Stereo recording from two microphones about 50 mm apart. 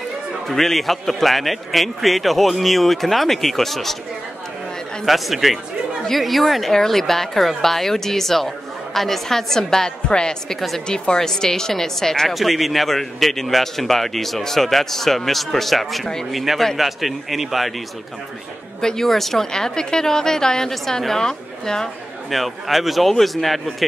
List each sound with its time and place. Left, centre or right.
0.5 s speech: centre
5.0 s a woman's voice: centre
18.8 s a woman's voice: centre
22.3 s speech: centre